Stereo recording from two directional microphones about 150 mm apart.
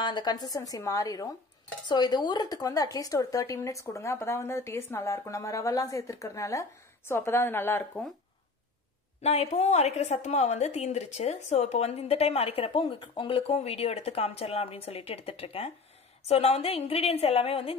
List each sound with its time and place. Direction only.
0.0 s a woman's voice: 30° left (ahead or behind)
9.2 s a woman's voice: 45° left (ahead or behind)